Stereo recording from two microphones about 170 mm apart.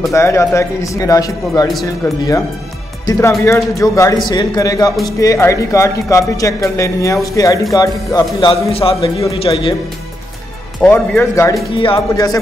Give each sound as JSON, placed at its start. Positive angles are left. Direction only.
{"t": 0.1, "sound": "speech", "side_deg": 15}
{"t": 10.8, "sound": "speech", "side_deg": 15}
{"t": 11.7, "sound": "speech", "side_deg": 30}